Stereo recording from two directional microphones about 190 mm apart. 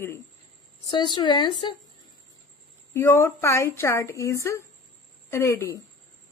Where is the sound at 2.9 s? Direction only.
15° left (ahead or behind).